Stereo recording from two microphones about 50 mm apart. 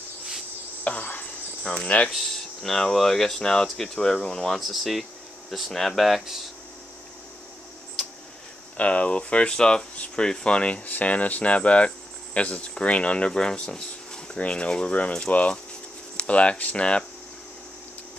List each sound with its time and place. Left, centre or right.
0.9 s cricket: left
1.6 s speech: left
2.1 s speech: centre
8.7 s speech: left